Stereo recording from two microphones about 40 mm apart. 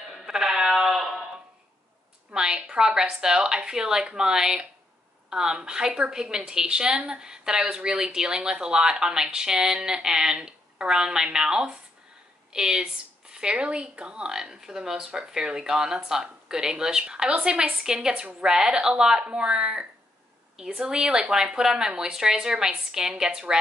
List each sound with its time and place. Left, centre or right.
0.3 s sheep: centre
2.3 s a sound: centre
2.7 s a woman's voice: centre